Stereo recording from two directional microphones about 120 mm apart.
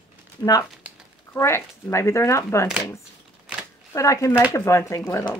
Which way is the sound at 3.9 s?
25° left (ahead or behind).